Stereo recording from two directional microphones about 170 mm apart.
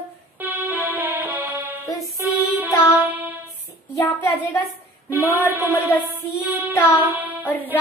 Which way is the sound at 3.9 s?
20° left (ahead or behind).